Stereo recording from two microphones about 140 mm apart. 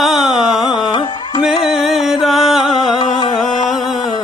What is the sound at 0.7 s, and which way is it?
Music, 30° left (ahead or behind).